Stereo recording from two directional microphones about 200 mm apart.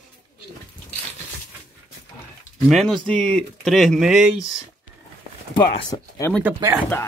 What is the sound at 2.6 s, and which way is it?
Speech, centre (ahead or behind).